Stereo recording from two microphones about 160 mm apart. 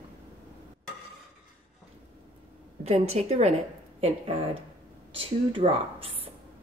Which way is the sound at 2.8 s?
45° right (ahead or behind).